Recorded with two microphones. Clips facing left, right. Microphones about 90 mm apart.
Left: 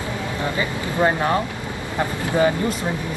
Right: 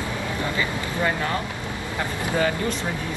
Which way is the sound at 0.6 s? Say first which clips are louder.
Left 7 dB; 30° left (ahead or behind).